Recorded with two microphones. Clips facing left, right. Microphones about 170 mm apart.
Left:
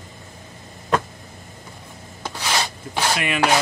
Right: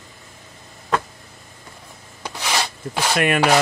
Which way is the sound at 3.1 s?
50° right (ahead or behind).